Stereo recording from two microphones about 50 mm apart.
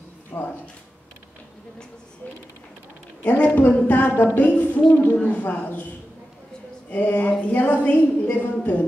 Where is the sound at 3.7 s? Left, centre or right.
Left.